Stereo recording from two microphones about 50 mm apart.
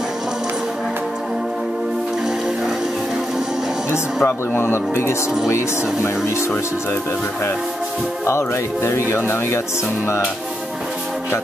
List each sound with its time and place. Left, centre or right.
3.9 s speech: left
8.3 s speech: left